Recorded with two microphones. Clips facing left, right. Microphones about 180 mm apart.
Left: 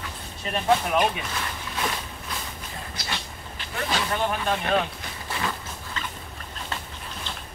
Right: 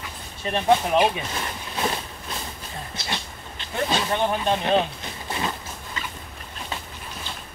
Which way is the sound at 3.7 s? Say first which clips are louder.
Right 3 dB; 25° right (ahead or behind).